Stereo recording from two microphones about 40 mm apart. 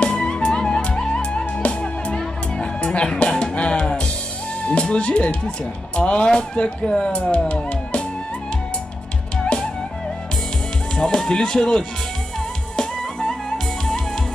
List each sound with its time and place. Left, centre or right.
0.0 s music: left
4.6 s speech: left
11.0 s speech: centre
12.7 s music: centre